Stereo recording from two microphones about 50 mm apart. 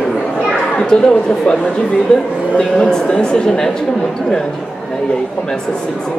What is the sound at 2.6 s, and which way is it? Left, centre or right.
Speech, centre.